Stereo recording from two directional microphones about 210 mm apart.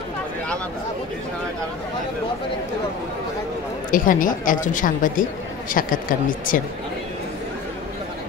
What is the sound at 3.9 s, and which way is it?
A woman's voice, 40° left (ahead or behind).